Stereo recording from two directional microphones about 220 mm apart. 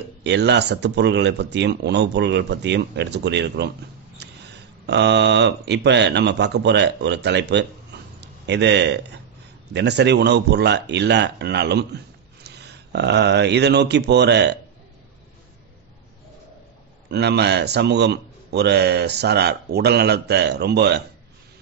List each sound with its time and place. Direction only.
0.2 s a man's voice: 50° right (ahead or behind)
17.1 s a man's voice: 50° right (ahead or behind)